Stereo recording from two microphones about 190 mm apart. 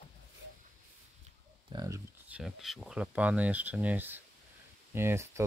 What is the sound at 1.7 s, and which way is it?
Speech, 20° right (ahead or behind).